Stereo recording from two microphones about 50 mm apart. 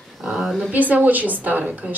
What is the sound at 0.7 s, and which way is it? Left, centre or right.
Speech, right.